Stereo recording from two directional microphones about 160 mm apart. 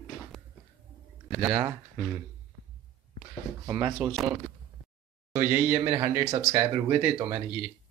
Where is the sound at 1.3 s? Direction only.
25° right (ahead or behind).